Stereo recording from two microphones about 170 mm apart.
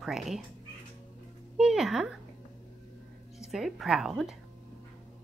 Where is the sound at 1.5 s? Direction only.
5° right (ahead or behind).